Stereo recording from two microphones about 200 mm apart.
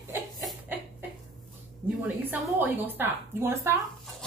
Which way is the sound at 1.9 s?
5° right (ahead or behind).